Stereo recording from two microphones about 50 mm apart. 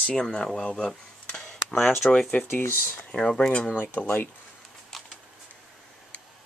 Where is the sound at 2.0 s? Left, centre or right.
Left.